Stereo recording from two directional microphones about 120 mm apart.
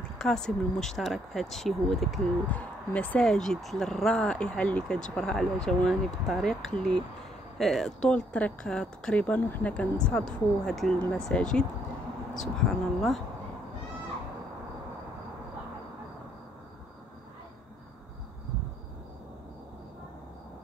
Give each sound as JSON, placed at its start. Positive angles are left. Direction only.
{"t": 0.2, "sound": "speech", "side_deg": 5}
{"t": 2.4, "sound": "speech", "side_deg": 15}